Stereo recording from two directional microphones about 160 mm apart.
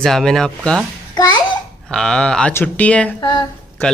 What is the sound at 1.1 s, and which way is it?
Speech, 25° left (ahead or behind).